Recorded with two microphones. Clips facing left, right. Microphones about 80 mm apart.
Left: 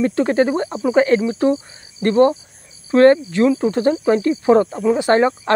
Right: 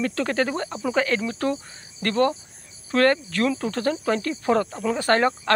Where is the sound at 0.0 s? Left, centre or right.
Left.